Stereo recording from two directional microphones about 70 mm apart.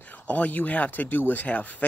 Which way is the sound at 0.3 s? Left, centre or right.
Left.